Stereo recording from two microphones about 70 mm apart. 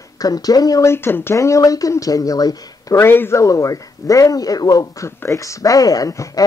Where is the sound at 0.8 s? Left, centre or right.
Left.